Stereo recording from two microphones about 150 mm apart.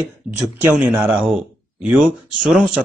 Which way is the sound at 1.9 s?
10° right (ahead or behind).